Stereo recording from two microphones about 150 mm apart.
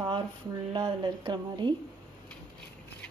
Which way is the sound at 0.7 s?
30° right (ahead or behind).